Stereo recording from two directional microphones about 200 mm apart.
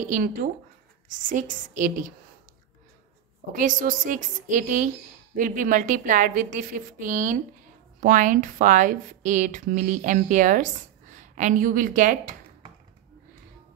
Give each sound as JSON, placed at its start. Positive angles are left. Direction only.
{"t": 0.1, "sound": "a woman's voice", "side_deg": -45}
{"t": 1.8, "sound": "speech", "side_deg": -40}
{"t": 3.5, "sound": "a woman's voice", "side_deg": -40}